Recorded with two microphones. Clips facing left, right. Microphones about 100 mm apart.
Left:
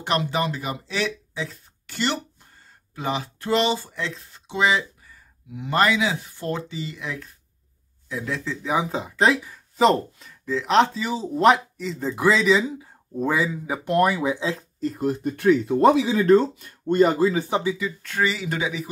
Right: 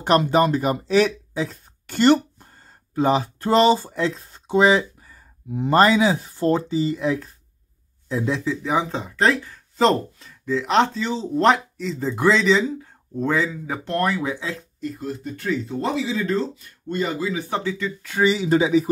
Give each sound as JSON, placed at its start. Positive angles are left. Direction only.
{"t": 0.0, "sound": "speech", "side_deg": -45}
{"t": 8.5, "sound": "speech", "side_deg": 0}
{"t": 14.5, "sound": "speech", "side_deg": 35}
{"t": 15.0, "sound": "speech", "side_deg": 60}
{"t": 17.5, "sound": "speech", "side_deg": 15}
{"t": 18.2, "sound": "speech", "side_deg": -25}